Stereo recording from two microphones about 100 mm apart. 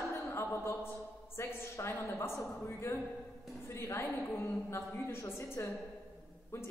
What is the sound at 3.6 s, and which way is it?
A woman's voice, 25° left (ahead or behind).